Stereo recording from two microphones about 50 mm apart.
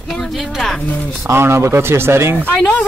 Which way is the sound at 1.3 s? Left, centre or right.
Right.